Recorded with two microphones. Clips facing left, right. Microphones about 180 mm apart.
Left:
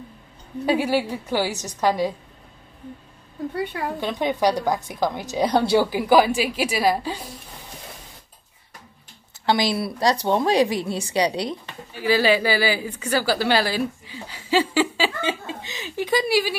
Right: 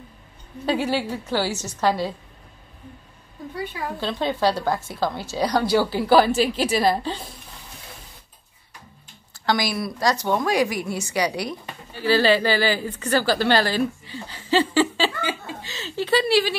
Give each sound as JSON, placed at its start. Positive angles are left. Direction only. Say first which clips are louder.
{"t": 0.7, "sound": "a woman's voice", "louder": "left 2 dB", "side_deg": 10}
{"t": 3.5, "sound": "a woman's voice", "louder": "left 3 dB", "side_deg": 60}
{"t": 4.0, "sound": "a woman's voice", "louder": "left 1 dB", "side_deg": 15}
{"t": 5.9, "sound": "a woman's voice", "louder": "even", "side_deg": 15}
{"t": 9.5, "sound": "a woman's voice", "louder": "left 2 dB", "side_deg": 25}
{"t": 11.9, "sound": "a woman's voice", "louder": "right 1 dB", "side_deg": 10}
{"t": 15.2, "sound": "a woman's voice", "louder": "left 2 dB", "side_deg": 20}